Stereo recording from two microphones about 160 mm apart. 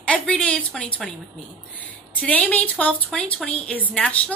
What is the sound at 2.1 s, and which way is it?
A woman's voice, 10° left (ahead or behind).